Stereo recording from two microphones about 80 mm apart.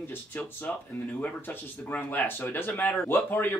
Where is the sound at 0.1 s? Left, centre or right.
Left.